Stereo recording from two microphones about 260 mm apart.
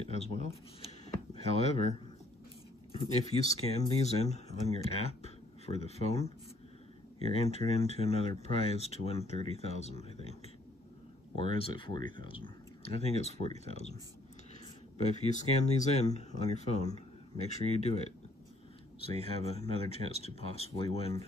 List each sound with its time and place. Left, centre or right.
0.1 s speech: left
1.0 s a sound: left
3.0 s speech: left
11.3 s speech: left
15.0 s speech: left
19.0 s speech: left